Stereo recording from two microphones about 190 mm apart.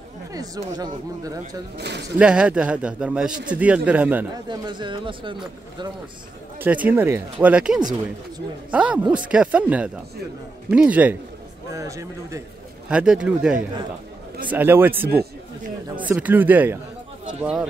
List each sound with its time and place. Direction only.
0.3 s speech: 20° right (ahead or behind)
1.8 s speech: 65° right (ahead or behind)
2.1 s speech: 5° right (ahead or behind)
4.5 s speech: 25° right (ahead or behind)
6.6 s speech: 10° right (ahead or behind)
12.9 s speech: 5° right (ahead or behind)
16.1 s speech: 10° right (ahead or behind)